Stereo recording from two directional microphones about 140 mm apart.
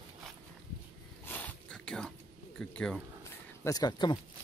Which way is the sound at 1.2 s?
10° left (ahead or behind).